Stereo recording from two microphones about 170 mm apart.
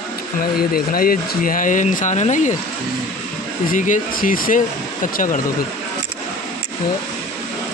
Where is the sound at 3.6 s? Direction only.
50° left (ahead or behind).